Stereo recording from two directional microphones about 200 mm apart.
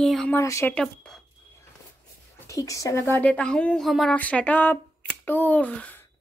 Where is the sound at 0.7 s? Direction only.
5° left (ahead or behind).